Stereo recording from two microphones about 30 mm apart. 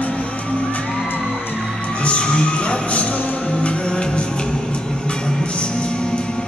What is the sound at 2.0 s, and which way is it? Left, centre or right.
Music, left.